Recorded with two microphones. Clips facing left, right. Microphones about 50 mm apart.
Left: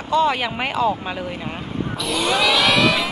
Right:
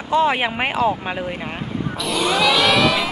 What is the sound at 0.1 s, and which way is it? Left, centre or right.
Speech, centre.